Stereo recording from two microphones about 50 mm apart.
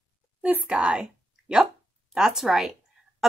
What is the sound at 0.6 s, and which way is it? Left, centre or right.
A woman's voice, centre.